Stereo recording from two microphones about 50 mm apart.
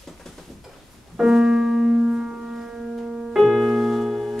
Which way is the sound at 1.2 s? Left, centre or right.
Centre.